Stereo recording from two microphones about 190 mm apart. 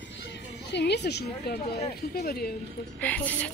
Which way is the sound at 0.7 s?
65° left (ahead or behind).